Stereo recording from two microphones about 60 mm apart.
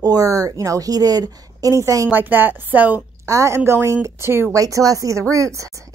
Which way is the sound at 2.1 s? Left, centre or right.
Right.